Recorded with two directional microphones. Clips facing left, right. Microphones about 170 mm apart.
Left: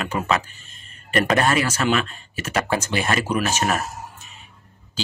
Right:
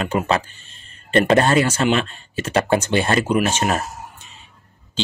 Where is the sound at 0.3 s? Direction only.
30° right (ahead or behind).